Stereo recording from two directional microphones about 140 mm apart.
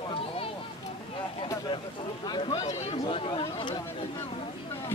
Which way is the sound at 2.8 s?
45° left (ahead or behind).